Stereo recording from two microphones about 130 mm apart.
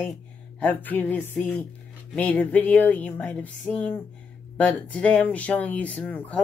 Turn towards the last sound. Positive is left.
turn(degrees=10)  # may be behind; listen again after turning